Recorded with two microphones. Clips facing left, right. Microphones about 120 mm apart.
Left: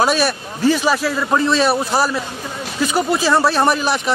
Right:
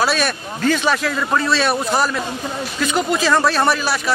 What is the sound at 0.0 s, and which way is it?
Speech, 10° left (ahead or behind).